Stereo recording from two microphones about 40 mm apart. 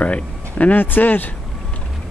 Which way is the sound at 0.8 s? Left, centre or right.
Left.